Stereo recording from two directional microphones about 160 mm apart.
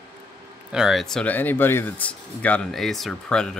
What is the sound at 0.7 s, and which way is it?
Speech, centre (ahead or behind).